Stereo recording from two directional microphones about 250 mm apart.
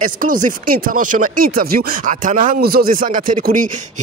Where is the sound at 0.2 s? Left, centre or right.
Right.